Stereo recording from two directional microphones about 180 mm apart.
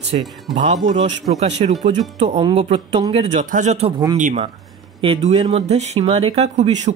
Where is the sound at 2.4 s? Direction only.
30° right (ahead or behind); by 4.5 s 45° right (ahead or behind).